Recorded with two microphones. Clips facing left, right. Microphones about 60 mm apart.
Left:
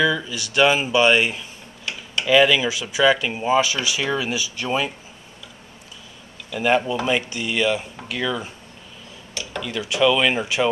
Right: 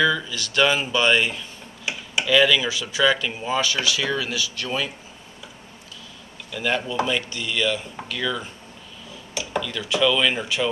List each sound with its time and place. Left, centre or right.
0.0 s speech: centre
1.9 s tick-tock: centre
2.2 s speech: centre
6.5 s speech: centre
9.3 s dishes: centre
9.6 s speech: centre